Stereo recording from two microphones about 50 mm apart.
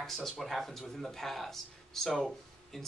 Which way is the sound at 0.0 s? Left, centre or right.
Centre.